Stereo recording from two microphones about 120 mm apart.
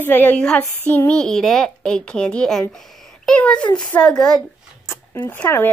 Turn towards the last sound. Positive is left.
turn(degrees=15)  # may be behind; listen again after turning